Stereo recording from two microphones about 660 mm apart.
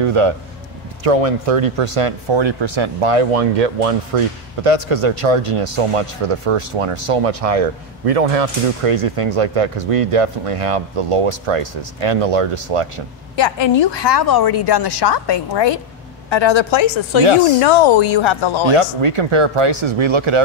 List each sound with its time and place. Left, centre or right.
0.0 s speech: right
4.6 s speech: right
13.4 s a woman's voice: left
18.7 s speech: right